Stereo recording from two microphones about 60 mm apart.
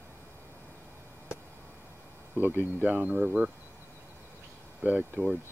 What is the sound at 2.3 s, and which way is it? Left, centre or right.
Speech, right.